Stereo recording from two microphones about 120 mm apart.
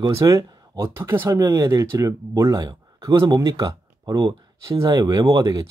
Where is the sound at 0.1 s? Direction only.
25° right (ahead or behind).